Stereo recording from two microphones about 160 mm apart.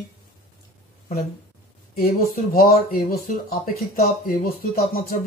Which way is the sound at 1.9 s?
65° left (ahead or behind).